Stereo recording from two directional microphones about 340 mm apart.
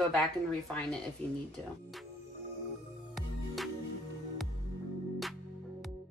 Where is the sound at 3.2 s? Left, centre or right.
Centre.